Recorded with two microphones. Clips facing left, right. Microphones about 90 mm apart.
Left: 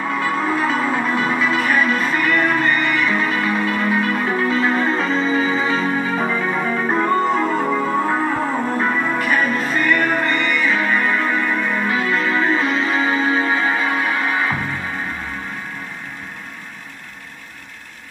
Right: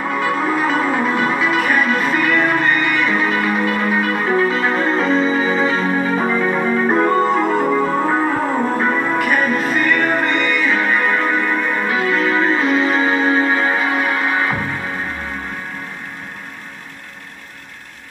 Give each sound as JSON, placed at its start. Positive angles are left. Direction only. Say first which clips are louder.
{"t": 0.1, "sound": "music", "louder": "right 2 dB", "side_deg": -5}